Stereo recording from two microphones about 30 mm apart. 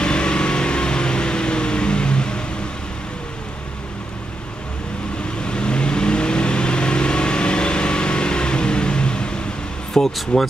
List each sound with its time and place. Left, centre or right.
0.0 s vehicle: left
5.4 s vehicle: left
9.9 s a sound: centre
10.3 s speech: left